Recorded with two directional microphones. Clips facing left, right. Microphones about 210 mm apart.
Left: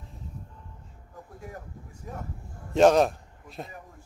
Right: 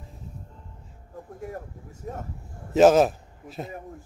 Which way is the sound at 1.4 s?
45° right (ahead or behind).